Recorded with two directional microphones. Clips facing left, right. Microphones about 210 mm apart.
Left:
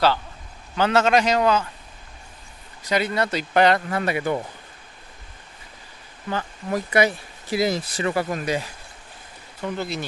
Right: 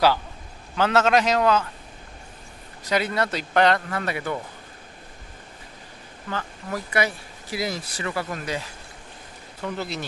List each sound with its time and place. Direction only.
0.7 s a man's voice: centre (ahead or behind)
2.9 s a man's voice: centre (ahead or behind); by 4.4 s 15° left (ahead or behind)
6.3 s speech: 20° left (ahead or behind)
9.7 s a man's voice: centre (ahead or behind)